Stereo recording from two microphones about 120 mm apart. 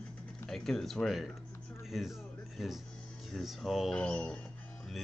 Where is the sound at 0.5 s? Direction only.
5° left (ahead or behind).